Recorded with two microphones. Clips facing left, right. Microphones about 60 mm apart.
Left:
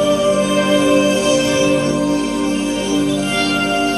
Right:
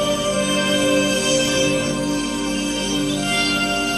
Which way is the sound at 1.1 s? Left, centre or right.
Left.